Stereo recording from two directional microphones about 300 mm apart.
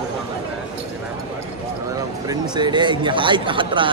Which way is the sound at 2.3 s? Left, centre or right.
Centre.